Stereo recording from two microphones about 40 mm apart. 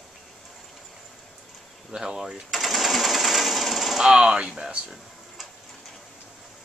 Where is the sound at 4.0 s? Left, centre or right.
Centre.